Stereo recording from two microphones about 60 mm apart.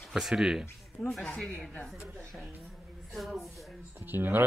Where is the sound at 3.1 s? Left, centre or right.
Centre.